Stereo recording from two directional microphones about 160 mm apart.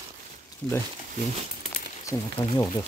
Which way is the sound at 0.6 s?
Centre (ahead or behind).